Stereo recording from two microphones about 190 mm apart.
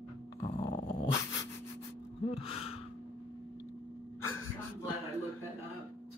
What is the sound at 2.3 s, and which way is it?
Gasp, 30° left (ahead or behind).